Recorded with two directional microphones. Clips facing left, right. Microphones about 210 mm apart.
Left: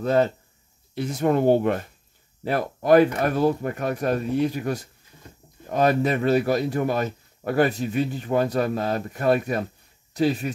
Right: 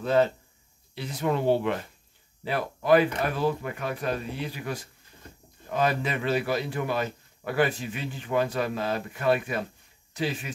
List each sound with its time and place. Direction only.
0.0 s a man's voice: 40° left (ahead or behind)